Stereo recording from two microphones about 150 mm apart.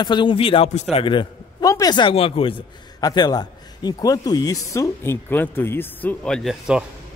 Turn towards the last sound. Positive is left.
turn(degrees=0)  # may be behind; listen again after turning